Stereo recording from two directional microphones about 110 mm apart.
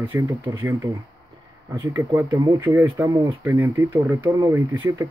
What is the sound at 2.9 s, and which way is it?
Speech, 25° right (ahead or behind).